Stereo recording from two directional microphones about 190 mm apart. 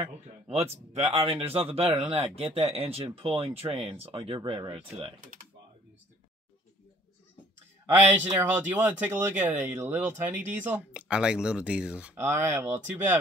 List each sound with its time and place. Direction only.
0.0 s speech: 35° right (ahead or behind)
7.9 s speech: 10° right (ahead or behind)